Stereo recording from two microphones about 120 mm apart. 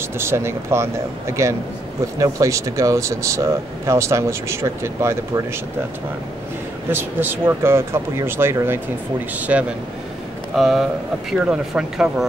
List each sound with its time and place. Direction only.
0.2 s speech: 20° right (ahead or behind)
6.9 s speech: 15° right (ahead or behind)
10.5 s speech: centre (ahead or behind)